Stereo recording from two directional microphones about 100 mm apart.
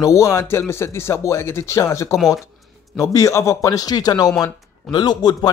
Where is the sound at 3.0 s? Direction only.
35° left (ahead or behind).